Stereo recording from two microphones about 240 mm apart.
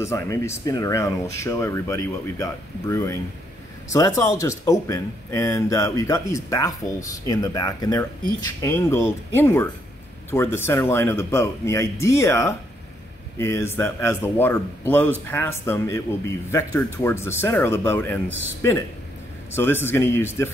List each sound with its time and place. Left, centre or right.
0.0 s speech: centre
19.5 s speech: centre